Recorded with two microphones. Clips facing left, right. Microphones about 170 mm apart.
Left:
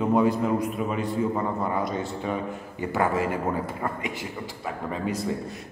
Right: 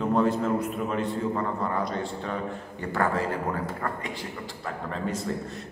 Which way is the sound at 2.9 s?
15° left (ahead or behind).